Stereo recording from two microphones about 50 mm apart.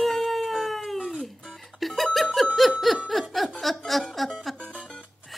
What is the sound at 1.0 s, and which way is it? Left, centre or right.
Music, centre.